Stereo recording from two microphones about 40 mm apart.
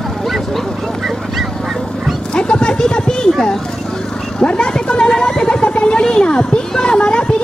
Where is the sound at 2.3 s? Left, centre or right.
Left.